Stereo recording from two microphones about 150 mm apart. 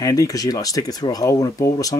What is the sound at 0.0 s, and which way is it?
Speech, 25° left (ahead or behind).